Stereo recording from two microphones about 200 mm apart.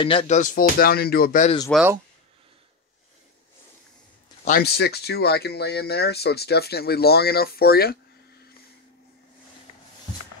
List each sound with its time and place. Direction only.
0.0 s speech: 25° left (ahead or behind); by 1.5 s 45° left (ahead or behind)
1.7 s speech: 5° right (ahead or behind)
4.5 s speech: 50° left (ahead or behind)